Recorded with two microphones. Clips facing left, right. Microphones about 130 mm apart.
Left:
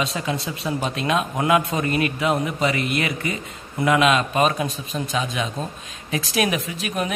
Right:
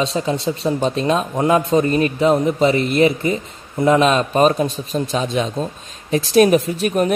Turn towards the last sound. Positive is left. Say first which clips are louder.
# right 8 dB
turn(degrees=-40)  # may be behind; listen again after turning